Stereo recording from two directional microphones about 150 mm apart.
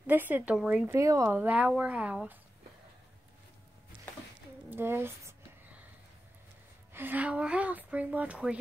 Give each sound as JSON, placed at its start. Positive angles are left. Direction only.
{"t": 0.0, "sound": "a woman's voice", "side_deg": -10}
{"t": 4.6, "sound": "speech", "side_deg": -15}
{"t": 6.9, "sound": "a woman's voice", "side_deg": -15}